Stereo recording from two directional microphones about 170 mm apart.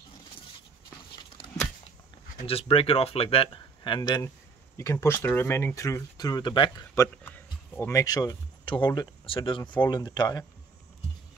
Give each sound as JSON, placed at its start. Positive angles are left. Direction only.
{"t": 2.4, "sound": "speech", "side_deg": 35}
{"t": 7.7, "sound": "speech", "side_deg": 10}
{"t": 8.0, "sound": "speech", "side_deg": 20}